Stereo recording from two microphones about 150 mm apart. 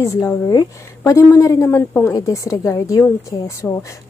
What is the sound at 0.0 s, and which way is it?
A woman's voice, 20° left (ahead or behind).